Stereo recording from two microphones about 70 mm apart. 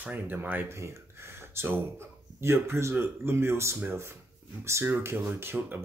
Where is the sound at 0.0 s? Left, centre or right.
Right.